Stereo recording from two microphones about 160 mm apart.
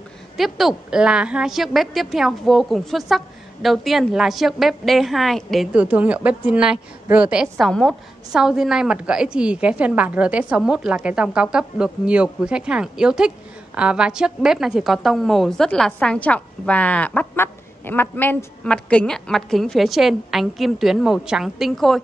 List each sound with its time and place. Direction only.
0.4 s a woman's voice: centre (ahead or behind)